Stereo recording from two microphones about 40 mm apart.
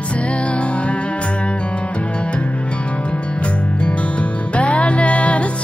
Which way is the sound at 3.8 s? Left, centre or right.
Left.